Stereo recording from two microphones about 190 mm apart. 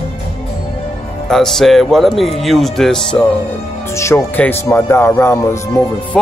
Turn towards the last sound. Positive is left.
turn(degrees=5)  # may be behind; listen again after turning